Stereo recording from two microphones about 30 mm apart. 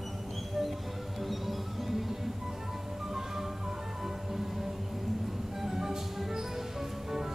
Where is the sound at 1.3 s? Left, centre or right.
Centre.